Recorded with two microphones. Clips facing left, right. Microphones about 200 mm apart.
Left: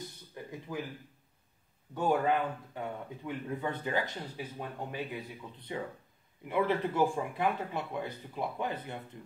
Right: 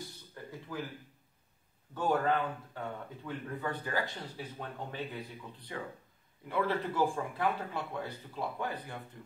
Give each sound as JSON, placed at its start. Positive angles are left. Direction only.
{"t": 0.3, "sound": "a sound", "side_deg": 15}
{"t": 2.0, "sound": "speech", "side_deg": 10}
{"t": 5.7, "sound": "speech", "side_deg": 20}